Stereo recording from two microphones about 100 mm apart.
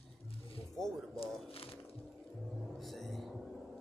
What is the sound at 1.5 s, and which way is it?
Music, 70° left (ahead or behind).